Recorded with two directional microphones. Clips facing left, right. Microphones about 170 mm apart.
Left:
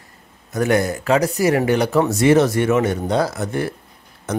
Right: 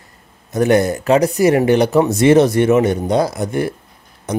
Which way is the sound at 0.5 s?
25° right (ahead or behind).